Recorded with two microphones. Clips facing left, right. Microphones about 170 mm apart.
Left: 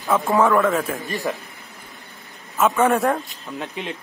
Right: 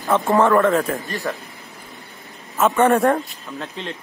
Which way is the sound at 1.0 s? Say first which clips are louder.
Left 1 dB; 20° left (ahead or behind).